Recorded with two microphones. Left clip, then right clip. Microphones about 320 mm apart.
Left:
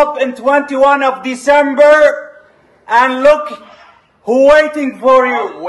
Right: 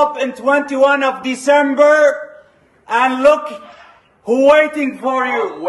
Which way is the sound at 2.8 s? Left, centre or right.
Centre.